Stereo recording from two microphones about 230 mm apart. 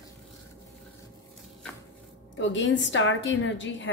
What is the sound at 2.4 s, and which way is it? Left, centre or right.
A woman's voice, left.